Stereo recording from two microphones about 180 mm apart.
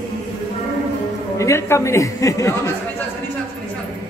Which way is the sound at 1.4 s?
15° left (ahead or behind).